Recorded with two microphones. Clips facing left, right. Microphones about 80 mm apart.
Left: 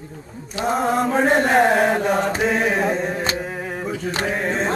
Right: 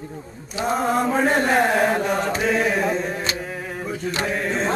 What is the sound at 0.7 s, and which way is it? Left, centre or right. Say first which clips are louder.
Chant: left 1 dB; centre.